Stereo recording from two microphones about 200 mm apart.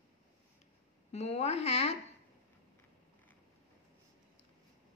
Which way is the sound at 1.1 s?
35° left (ahead or behind).